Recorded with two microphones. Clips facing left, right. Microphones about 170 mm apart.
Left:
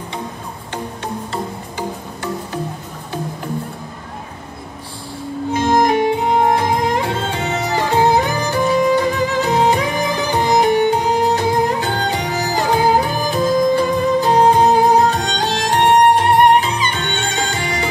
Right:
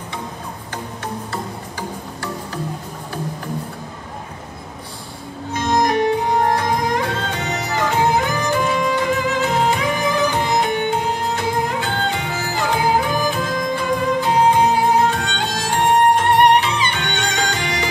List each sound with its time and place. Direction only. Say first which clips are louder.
1.0 s music: left 2 dB; 25° left (ahead or behind)
5.5 s music: left 3 dB; 25° left (ahead or behind)